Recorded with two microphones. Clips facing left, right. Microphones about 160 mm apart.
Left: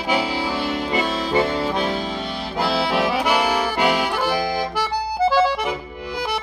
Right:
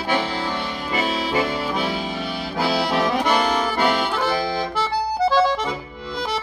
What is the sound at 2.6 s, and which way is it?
Accordion, centre (ahead or behind).